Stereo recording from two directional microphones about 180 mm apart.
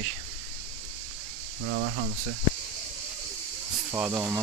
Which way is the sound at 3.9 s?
15° right (ahead or behind).